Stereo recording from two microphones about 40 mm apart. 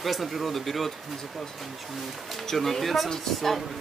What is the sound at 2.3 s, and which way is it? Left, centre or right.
Speech, centre.